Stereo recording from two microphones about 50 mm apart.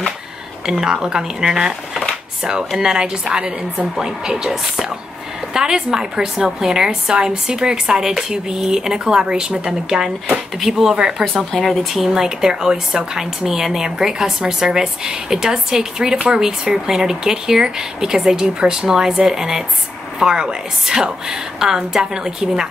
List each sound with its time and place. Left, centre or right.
0.7 s speech: centre
11.0 s speech: centre
11.5 s speech: centre